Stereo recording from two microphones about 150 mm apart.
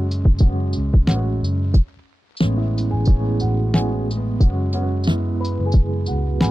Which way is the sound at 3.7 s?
10° left (ahead or behind).